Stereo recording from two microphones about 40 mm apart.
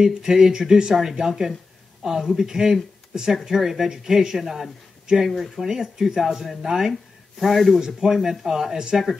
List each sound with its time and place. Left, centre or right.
0.0 s speech: centre
7.8 s speech: centre